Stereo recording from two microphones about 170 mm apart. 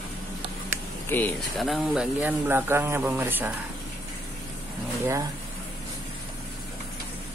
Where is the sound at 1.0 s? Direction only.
10° left (ahead or behind).